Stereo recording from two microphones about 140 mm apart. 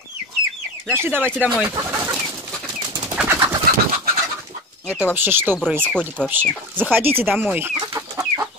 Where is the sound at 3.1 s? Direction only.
15° right (ahead or behind).